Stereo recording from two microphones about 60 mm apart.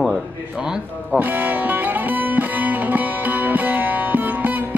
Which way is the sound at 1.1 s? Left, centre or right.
Right.